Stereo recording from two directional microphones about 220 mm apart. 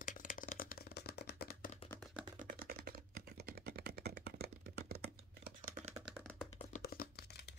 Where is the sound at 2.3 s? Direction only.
40° right (ahead or behind).